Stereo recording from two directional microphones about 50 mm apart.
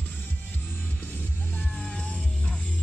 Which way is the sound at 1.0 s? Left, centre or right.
Left.